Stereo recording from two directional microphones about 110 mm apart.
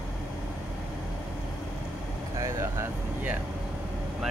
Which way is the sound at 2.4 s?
25° right (ahead or behind).